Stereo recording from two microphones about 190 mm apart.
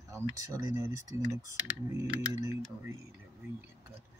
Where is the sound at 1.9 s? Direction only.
20° right (ahead or behind).